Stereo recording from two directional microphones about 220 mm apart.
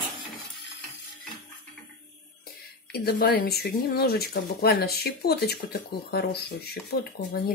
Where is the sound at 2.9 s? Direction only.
40° left (ahead or behind).